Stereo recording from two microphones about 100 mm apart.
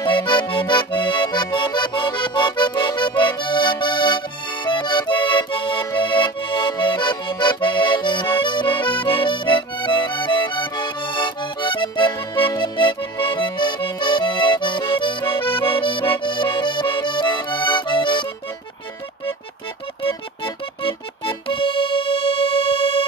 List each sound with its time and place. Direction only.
0.0 s accordion: 55° left (ahead or behind)
8.4 s music: 55° left (ahead or behind)
20.0 s music: 60° left (ahead or behind)